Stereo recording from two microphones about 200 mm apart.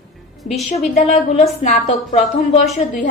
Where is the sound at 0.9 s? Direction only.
35° left (ahead or behind).